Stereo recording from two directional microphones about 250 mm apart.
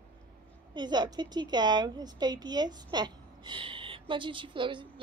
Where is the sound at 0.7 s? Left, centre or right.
Centre.